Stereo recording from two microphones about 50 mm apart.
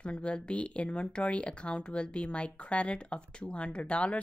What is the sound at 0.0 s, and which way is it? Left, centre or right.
Speech, left.